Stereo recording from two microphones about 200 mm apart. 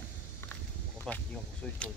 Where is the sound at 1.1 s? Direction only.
5° left (ahead or behind).